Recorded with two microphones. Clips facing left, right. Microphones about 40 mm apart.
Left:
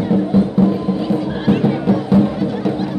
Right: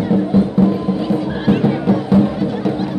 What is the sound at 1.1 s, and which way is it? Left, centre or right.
Music, centre.